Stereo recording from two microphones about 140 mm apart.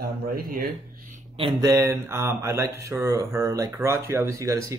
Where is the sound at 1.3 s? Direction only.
40° right (ahead or behind).